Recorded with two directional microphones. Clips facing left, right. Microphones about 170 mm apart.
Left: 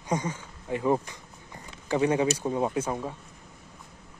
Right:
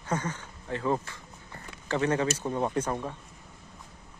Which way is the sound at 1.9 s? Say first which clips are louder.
Left 3 dB; 15° left (ahead or behind).